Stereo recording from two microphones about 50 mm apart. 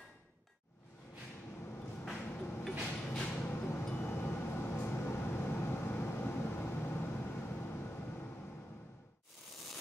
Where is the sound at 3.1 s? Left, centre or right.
Left.